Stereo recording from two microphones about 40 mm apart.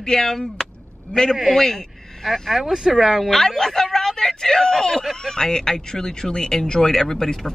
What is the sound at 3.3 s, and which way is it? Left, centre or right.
A man's voice, centre.